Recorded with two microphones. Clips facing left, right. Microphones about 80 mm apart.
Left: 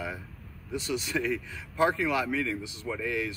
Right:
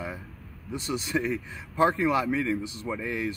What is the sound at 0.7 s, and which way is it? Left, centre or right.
A man's voice, right.